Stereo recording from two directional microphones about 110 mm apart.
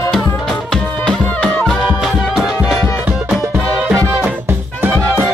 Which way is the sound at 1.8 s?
5° right (ahead or behind).